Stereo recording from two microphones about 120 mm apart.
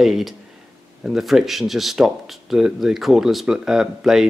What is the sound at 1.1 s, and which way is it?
Speech, centre (ahead or behind).